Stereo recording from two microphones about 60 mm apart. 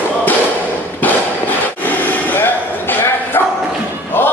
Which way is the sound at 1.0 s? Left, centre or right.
Left.